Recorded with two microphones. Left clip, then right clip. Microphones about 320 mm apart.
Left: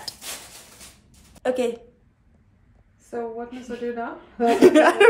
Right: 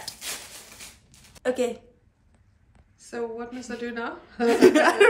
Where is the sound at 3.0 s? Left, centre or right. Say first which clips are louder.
Left 2 dB; centre.